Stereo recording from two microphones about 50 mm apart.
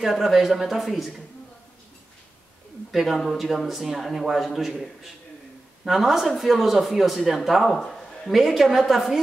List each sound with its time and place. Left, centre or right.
0.0 s a man's voice: centre
2.9 s a man's voice: centre
7.6 s a sound: centre
8.4 s a man's voice: centre